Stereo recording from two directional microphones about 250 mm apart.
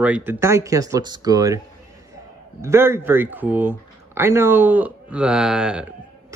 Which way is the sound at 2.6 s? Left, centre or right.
Centre.